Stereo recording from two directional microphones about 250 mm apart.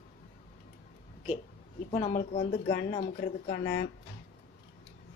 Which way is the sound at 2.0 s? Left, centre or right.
Left.